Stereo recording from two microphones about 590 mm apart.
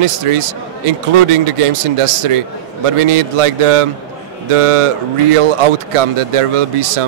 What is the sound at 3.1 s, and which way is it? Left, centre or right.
A man's voice, right.